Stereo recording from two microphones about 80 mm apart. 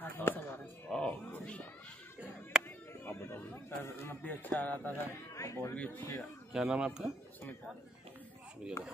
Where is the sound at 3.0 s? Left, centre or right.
Left.